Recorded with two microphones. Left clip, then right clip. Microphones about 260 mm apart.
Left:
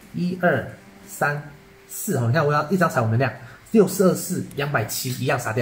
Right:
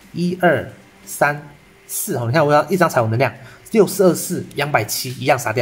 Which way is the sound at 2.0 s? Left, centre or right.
Right.